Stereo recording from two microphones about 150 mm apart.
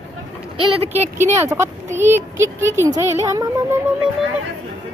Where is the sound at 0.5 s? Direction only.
40° right (ahead or behind).